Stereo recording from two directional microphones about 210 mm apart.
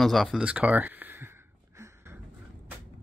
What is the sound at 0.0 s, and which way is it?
Speech, centre (ahead or behind).